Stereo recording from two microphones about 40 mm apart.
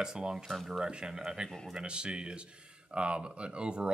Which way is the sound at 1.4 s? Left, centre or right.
Centre.